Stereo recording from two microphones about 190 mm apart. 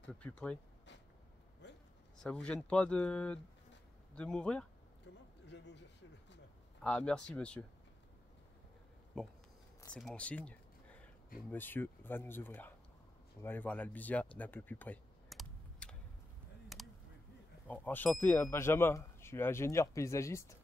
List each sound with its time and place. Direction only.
0.2 s speech: 5° left (ahead or behind)
2.2 s speech: 5° left (ahead or behind)
5.5 s a sound: 65° left (ahead or behind)
6.8 s speech: 5° left (ahead or behind)
9.1 s speech: 5° left (ahead or behind)
16.7 s a sound: centre (ahead or behind)
17.6 s speech: 10° left (ahead or behind)